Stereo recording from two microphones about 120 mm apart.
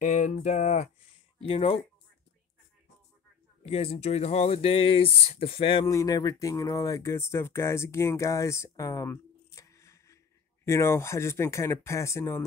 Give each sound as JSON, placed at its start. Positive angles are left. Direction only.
{"t": 0.0, "sound": "a sound", "side_deg": 85}
{"t": 1.4, "sound": "speech", "side_deg": 50}
{"t": 3.6, "sound": "speech", "side_deg": 55}
{"t": 5.9, "sound": "speech", "side_deg": 30}